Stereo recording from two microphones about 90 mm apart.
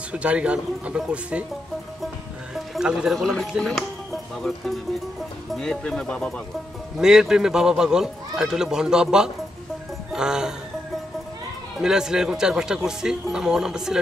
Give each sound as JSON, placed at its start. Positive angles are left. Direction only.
{"t": 0.1, "sound": "a man's voice", "side_deg": -15}
{"t": 2.5, "sound": "speech", "side_deg": -5}
{"t": 7.0, "sound": "a man's voice", "side_deg": -5}
{"t": 10.1, "sound": "music", "side_deg": -5}
{"t": 11.8, "sound": "a man's voice", "side_deg": -5}